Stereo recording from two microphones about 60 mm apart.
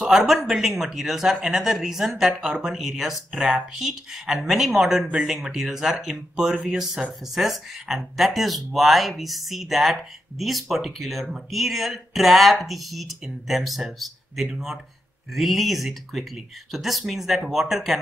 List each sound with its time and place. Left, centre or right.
0.3 s speech: centre